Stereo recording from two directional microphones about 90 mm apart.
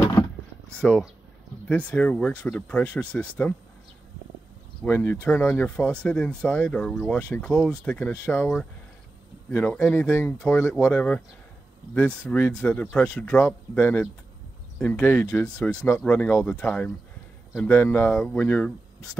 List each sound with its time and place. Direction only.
0.7 s speech: 10° left (ahead or behind)
4.8 s speech: 20° left (ahead or behind)
13.7 s speech: 25° left (ahead or behind)